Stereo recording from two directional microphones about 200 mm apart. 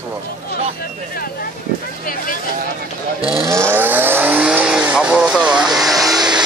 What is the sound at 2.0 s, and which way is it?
Speech, 45° left (ahead or behind).